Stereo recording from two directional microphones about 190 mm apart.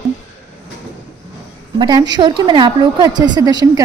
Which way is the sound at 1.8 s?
20° right (ahead or behind).